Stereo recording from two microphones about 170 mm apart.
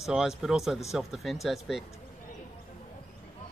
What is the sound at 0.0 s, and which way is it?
Speech, 5° right (ahead or behind).